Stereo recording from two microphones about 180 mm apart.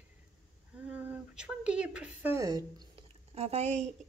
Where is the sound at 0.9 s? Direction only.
10° right (ahead or behind).